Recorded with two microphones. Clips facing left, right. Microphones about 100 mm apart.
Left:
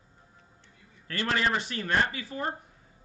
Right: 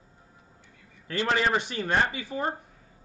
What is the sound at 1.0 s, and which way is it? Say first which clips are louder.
Speech: right 3 dB; 20° right (ahead or behind).